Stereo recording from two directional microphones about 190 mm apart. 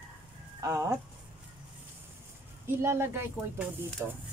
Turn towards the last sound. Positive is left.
turn(degrees=-10)  # may be behind; listen again after turning